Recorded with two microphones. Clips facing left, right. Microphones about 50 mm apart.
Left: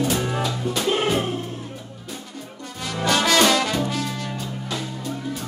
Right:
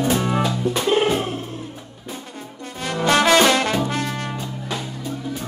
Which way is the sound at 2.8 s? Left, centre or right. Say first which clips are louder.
Right 4 dB; right.